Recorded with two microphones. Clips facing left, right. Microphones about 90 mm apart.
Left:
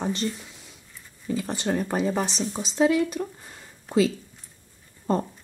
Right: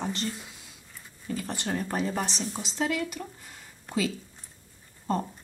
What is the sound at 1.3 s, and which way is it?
Speech, 20° left (ahead or behind).